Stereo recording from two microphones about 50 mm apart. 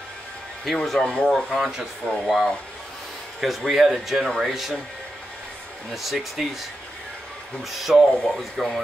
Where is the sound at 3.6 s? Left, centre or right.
Centre.